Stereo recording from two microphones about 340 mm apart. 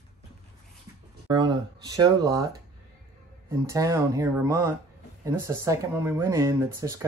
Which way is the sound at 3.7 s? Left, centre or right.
Centre.